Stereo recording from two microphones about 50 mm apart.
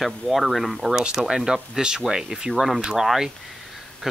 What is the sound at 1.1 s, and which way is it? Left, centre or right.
Speech, centre.